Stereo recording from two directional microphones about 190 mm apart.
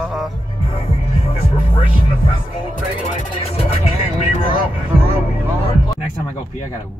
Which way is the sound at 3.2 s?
30° left (ahead or behind).